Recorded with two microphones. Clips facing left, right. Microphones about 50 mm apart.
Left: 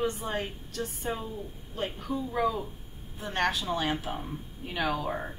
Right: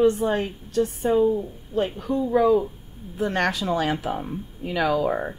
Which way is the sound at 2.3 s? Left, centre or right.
Right.